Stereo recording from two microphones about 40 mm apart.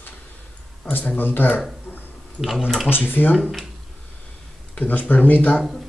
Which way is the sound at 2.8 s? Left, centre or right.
Left.